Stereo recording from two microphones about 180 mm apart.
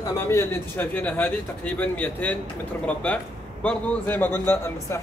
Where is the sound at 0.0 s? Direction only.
15° left (ahead or behind).